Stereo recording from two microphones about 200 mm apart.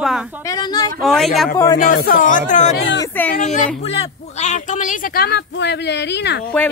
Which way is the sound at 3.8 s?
30° left (ahead or behind).